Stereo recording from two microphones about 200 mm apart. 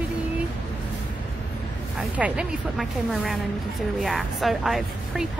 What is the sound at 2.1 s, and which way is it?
A woman's voice, 5° right (ahead or behind).